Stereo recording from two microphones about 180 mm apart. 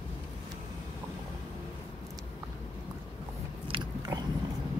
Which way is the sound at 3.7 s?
25° right (ahead or behind).